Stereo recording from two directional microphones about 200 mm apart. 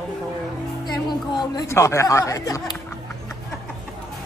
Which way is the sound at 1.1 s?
20° left (ahead or behind).